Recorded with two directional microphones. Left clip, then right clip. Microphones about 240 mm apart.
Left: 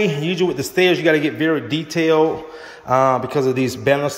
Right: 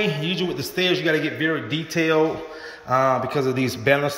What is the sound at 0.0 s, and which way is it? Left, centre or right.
A man's voice, centre.